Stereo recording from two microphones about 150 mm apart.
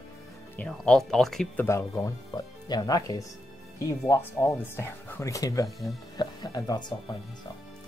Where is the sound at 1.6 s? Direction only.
20° left (ahead or behind).